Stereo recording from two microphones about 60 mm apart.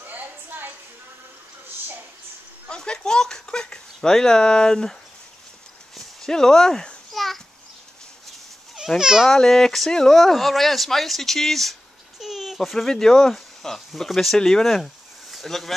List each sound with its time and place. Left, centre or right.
0.0 s a sound: right
2.7 s speech: centre
5.9 s speech: centre
8.7 s a child's voice: centre
9.3 s speech: centre